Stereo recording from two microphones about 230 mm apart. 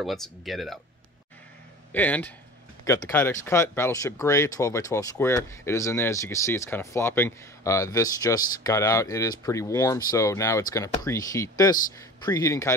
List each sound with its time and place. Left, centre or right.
0.0 s speech: centre
1.9 s speech: centre